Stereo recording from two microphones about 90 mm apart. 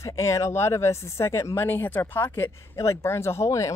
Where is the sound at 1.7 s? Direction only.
20° left (ahead or behind).